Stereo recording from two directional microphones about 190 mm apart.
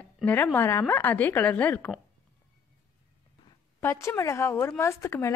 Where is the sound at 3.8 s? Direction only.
15° left (ahead or behind).